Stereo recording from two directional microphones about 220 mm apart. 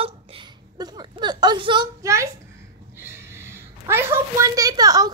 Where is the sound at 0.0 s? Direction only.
25° right (ahead or behind).